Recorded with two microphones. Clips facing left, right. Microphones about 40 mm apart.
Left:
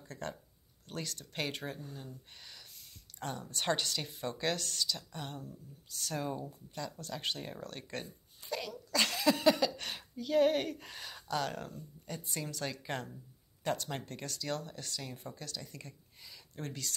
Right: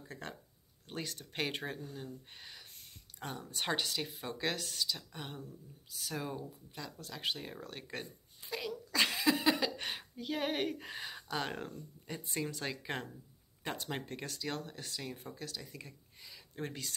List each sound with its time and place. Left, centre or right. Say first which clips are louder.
0.1 s speech: left 4 dB; centre
16.5 s speech: even; centre